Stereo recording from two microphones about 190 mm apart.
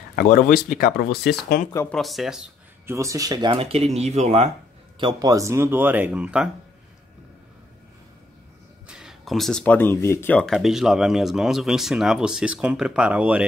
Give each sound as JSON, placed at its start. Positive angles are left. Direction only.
{"t": 0.1, "sound": "speech", "side_deg": 50}
{"t": 1.9, "sound": "speech", "side_deg": 0}
{"t": 2.9, "sound": "speech", "side_deg": -15}
{"t": 4.9, "sound": "speech", "side_deg": -25}
{"t": 8.8, "sound": "speech", "side_deg": -5}